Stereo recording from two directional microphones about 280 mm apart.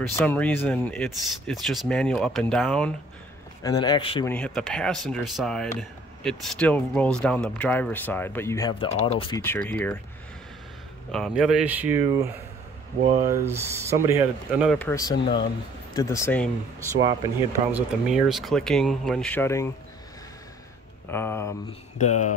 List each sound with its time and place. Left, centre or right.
0.2 s speech: centre
3.6 s speech: centre
4.3 s speech: centre
11.1 s speech: centre
13.3 s speech: centre
17.2 s speech: centre
21.1 s speech: centre
21.9 s speech: left